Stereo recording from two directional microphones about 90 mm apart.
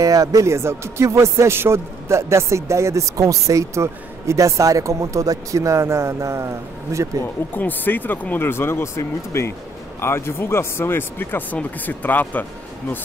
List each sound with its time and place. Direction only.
0.0 s a man's voice: 40° right (ahead or behind)
7.5 s speech: 20° left (ahead or behind)